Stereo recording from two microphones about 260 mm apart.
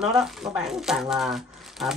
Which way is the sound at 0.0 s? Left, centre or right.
Centre.